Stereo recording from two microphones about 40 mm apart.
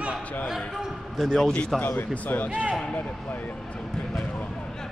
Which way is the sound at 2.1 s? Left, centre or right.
Left.